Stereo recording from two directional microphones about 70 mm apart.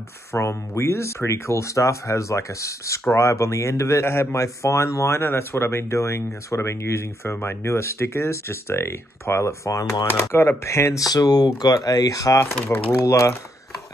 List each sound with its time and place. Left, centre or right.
0.3 s speech: left
4.0 s speech: left
9.7 s speech: left
10.1 s speech: left
11.1 s speech: left
12.6 s speech: left
13.0 s speech: left